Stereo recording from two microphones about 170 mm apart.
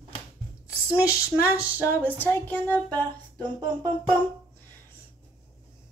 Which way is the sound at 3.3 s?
25° right (ahead or behind).